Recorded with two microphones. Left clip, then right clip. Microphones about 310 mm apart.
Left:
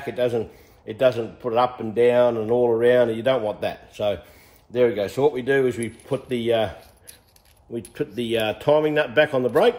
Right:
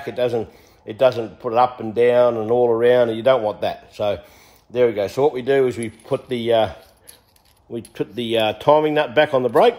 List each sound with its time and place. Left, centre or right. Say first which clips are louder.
0.0 s speech: right 2 dB; right
7.9 s speech: right 3 dB; right